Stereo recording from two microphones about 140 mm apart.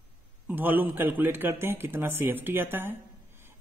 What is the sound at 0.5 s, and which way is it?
A man's voice, 15° right (ahead or behind).